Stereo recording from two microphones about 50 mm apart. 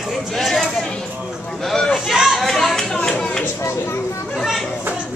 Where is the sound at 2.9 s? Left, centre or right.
Centre.